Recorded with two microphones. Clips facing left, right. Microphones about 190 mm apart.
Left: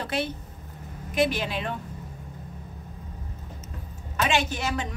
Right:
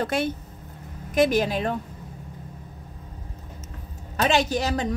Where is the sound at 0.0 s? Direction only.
45° right (ahead or behind).